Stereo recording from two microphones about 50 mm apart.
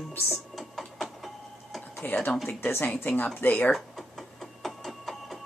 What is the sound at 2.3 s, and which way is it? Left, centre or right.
Speech, centre.